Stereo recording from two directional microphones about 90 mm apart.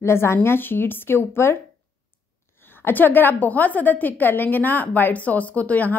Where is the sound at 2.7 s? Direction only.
20° left (ahead or behind).